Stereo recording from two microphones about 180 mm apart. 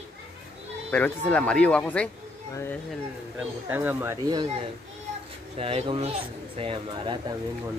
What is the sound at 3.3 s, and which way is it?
Speech, 10° right (ahead or behind).